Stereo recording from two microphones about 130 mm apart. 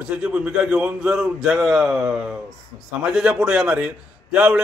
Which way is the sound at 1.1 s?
5° right (ahead or behind).